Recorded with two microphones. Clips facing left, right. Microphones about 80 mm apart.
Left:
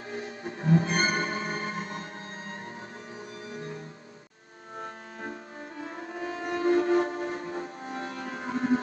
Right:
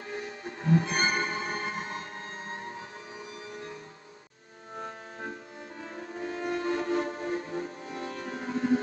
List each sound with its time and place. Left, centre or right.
0.1 s music: left
1.8 s music: right
5.9 s music: left